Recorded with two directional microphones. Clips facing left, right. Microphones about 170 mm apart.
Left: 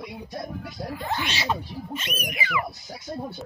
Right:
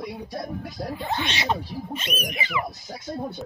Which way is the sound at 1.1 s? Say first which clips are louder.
Right 1 dB; 20° right (ahead or behind).